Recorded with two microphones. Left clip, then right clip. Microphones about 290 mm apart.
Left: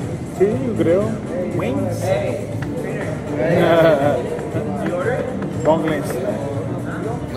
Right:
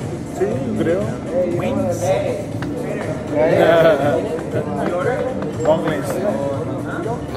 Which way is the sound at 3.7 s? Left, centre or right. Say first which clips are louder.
Right 1 dB; centre.